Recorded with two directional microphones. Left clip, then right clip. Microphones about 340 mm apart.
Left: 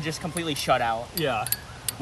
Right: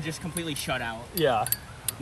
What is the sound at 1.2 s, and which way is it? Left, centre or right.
Speech, centre.